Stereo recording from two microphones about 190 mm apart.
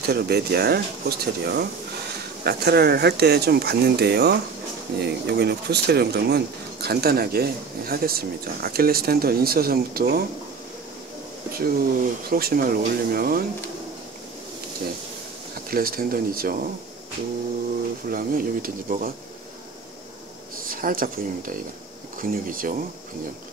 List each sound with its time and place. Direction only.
0.1 s speech: 55° right (ahead or behind)
11.5 s speech: 50° right (ahead or behind)
15.7 s speech: 50° right (ahead or behind)
18.1 s speech: 50° right (ahead or behind)
20.6 s speech: 50° right (ahead or behind)